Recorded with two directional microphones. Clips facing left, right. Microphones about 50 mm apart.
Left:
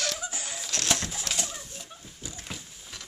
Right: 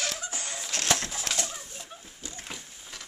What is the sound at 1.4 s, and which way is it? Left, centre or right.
Bird, centre.